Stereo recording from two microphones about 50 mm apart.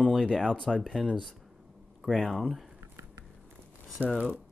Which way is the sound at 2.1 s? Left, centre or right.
Centre.